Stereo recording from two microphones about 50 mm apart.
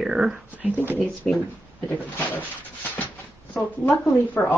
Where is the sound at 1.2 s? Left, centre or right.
Centre.